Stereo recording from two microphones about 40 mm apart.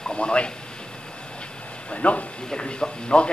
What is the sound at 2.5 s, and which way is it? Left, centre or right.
Speech, left.